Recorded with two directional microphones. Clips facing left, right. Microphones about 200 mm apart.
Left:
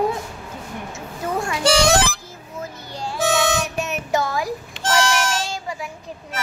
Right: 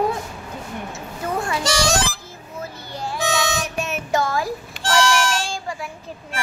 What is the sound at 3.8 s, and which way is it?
Child singing, 20° left (ahead or behind).